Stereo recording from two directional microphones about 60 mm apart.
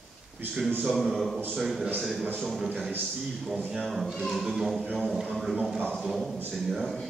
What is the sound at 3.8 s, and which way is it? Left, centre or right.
A man's voice, centre.